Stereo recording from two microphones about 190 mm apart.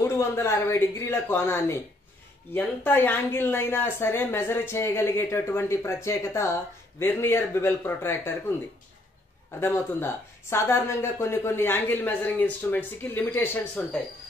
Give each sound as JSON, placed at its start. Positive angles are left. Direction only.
{"t": 0.0, "sound": "speech", "side_deg": 15}
{"t": 9.6, "sound": "speech", "side_deg": 15}